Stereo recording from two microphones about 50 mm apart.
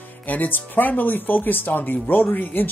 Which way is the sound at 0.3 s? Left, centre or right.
Left.